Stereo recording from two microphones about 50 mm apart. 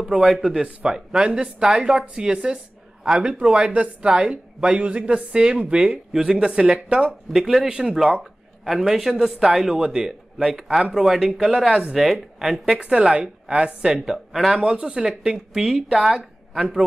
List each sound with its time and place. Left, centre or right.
0.0 s a man's voice: centre
7.3 s speech: centre
14.0 s speech: centre
14.6 s speech: centre
16.2 s speech: right